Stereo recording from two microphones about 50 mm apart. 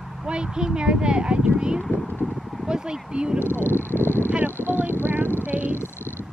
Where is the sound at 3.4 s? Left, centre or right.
Left.